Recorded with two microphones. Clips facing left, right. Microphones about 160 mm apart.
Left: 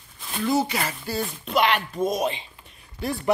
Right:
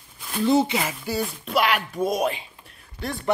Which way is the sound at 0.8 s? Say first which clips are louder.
Right 1 dB; 10° right (ahead or behind).